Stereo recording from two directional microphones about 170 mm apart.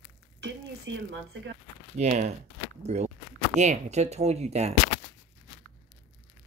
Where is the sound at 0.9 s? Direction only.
90° right.